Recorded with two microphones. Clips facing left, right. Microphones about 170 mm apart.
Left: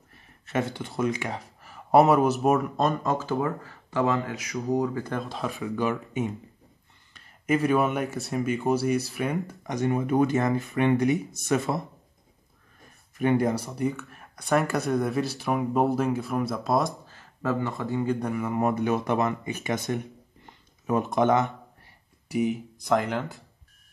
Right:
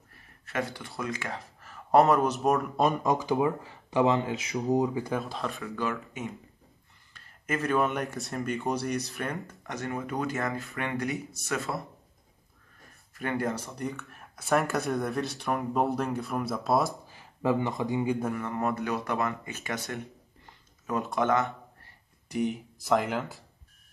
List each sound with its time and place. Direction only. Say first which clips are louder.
0.5 s speech: left 5 dB; 20° left (ahead or behind); by 2.7 s 5° left (ahead or behind)
2.8 s speech: even; 10° right (ahead or behind)
5.6 s speech: left 8 dB; 15° left (ahead or behind)
13.1 s speech: left 7 dB; 20° left (ahead or behind); by 16.9 s centre (ahead or behind)
17.1 s speech: right 1 dB; 15° right (ahead or behind)
18.2 s speech: left 4 dB; 5° left (ahead or behind)
22.3 s speech: left 4 dB; 5° left (ahead or behind)